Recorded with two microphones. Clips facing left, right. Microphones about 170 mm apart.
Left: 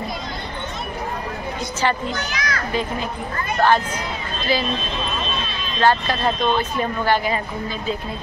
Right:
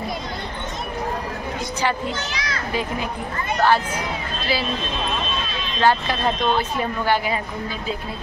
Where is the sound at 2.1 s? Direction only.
30° right (ahead or behind).